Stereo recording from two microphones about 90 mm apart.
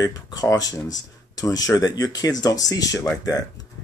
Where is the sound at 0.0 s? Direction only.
45° left (ahead or behind).